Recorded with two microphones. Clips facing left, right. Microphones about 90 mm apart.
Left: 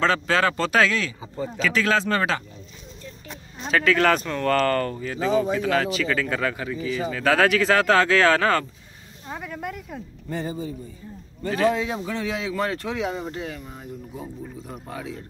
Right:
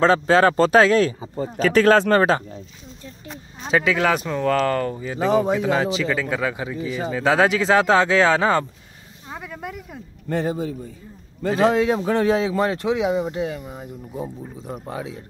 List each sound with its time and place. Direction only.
0.0 s a man's voice: 30° right (ahead or behind)
3.6 s speech: 15° right (ahead or behind)
9.3 s a sound: centre (ahead or behind)
10.3 s a man's voice: 75° right (ahead or behind); by 12.3 s 55° right (ahead or behind)
12.3 s a man's voice: 35° right (ahead or behind)
12.5 s speech: 20° right (ahead or behind)